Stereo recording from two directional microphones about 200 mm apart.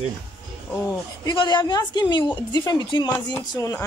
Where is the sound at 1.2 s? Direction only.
20° left (ahead or behind).